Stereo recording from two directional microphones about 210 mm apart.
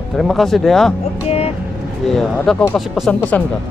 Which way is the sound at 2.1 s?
Centre (ahead or behind).